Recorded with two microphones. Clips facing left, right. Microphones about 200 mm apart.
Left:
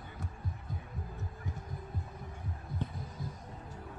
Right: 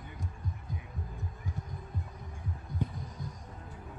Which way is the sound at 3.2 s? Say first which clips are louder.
Left 1 dB; 5° left (ahead or behind).